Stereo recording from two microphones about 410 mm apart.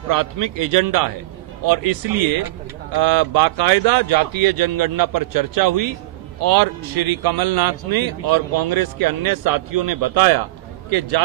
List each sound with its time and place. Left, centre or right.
0.1 s a man's voice: right
2.9 s a man's voice: right